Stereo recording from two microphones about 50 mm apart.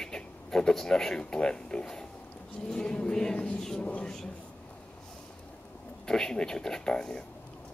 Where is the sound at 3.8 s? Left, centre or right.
Left.